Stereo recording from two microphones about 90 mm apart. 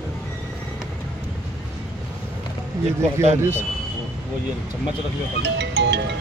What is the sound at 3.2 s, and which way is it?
Speech, 25° right (ahead or behind).